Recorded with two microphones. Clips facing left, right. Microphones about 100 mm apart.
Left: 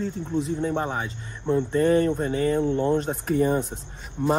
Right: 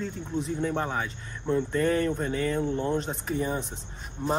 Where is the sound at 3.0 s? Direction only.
50° left (ahead or behind).